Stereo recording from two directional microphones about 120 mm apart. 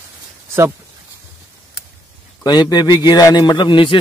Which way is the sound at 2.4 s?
35° left (ahead or behind).